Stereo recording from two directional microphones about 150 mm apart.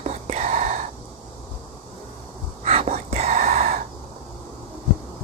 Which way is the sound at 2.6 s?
45° right (ahead or behind).